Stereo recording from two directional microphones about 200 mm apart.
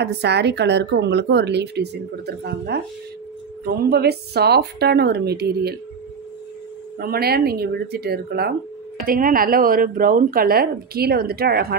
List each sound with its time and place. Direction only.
0.0 s a woman's voice: 55° right (ahead or behind)
7.0 s a woman's voice: 50° right (ahead or behind)